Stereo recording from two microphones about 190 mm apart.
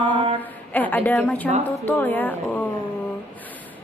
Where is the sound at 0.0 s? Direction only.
25° right (ahead or behind).